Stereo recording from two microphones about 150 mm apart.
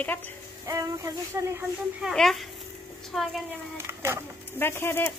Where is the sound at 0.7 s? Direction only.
20° right (ahead or behind).